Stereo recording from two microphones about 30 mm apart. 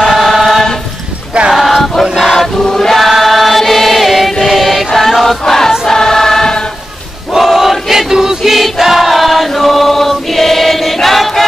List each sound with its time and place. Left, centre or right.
0.2 s choir: centre
1.5 s a sound: centre
2.6 s choir: centre
3.0 s choir: centre
4.5 s chant: centre
5.9 s choir: centre
7.3 s chant: centre
8.1 s choir: right
8.5 s choir: centre